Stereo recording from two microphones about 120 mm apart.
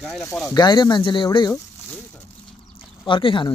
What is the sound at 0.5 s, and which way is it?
Speech, 35° left (ahead or behind).